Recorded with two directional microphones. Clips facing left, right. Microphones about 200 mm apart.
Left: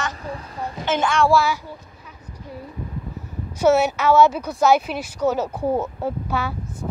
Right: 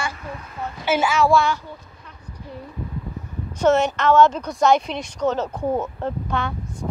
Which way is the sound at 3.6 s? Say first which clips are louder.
Left 1 dB; 10° left (ahead or behind).